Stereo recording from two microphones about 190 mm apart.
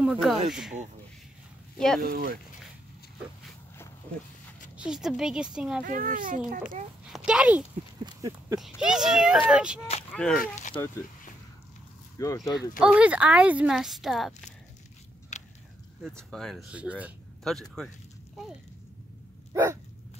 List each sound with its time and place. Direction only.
0.0 s speech: 5° right (ahead or behind)
2.0 s a child's voice: 50° right (ahead or behind)
4.7 s speech: 5° right (ahead or behind)
5.9 s a child's voice: 45° right (ahead or behind)
7.2 s speech: 5° right (ahead or behind)
8.0 s a sound: 20° right (ahead or behind)
8.5 s speech: centre (ahead or behind)
12.2 s speech: 15° left (ahead or behind)
12.8 s speech: 5° right (ahead or behind)
15.3 s biting: 40° left (ahead or behind)
16.0 s speech: centre (ahead or behind)
19.5 s dog: 15° right (ahead or behind)